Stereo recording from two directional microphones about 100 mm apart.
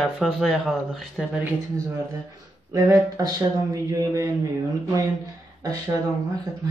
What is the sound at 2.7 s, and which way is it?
Speech, 35° right (ahead or behind).